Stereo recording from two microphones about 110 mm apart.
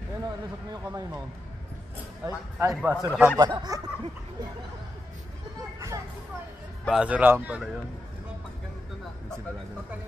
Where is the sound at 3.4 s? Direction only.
40° right (ahead or behind).